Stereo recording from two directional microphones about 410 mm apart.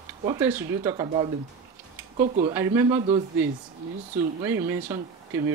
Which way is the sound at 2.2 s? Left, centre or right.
Centre.